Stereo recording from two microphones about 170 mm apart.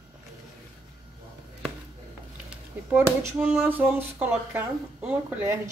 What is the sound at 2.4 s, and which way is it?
Speech, 10° right (ahead or behind).